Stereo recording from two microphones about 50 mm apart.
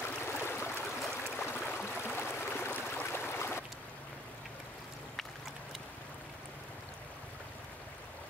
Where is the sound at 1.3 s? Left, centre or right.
Left.